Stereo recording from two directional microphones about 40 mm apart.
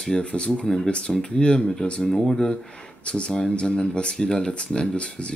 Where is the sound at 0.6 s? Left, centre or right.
Centre.